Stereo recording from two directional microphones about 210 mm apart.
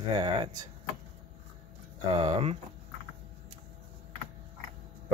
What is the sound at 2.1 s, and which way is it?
Speech, 25° right (ahead or behind).